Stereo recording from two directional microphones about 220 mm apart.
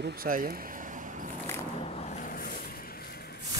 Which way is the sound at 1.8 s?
30° left (ahead or behind).